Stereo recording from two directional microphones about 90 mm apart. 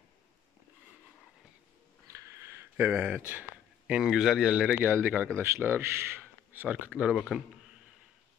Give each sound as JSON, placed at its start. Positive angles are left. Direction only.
{"t": 2.0, "sound": "a sound", "side_deg": -30}
{"t": 4.7, "sound": "a man's voice", "side_deg": -20}
{"t": 7.1, "sound": "speech", "side_deg": -5}